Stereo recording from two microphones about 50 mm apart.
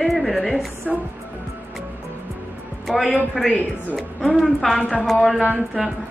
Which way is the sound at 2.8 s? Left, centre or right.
Centre.